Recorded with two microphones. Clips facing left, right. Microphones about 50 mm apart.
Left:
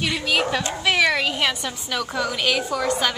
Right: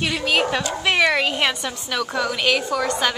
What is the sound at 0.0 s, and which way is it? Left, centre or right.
Speech, centre.